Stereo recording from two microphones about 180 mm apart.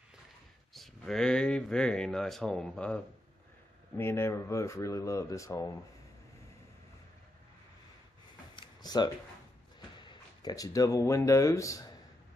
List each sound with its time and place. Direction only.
0.7 s speech: centre (ahead or behind); by 5.7 s 15° left (ahead or behind)
8.5 s a sound: 25° left (ahead or behind)
9.8 s speech: 25° left (ahead or behind)